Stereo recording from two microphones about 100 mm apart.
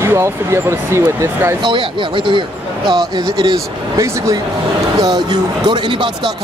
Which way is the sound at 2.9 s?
45° right (ahead or behind).